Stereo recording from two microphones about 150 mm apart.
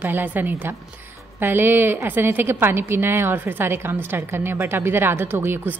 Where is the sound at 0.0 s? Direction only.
10° right (ahead or behind).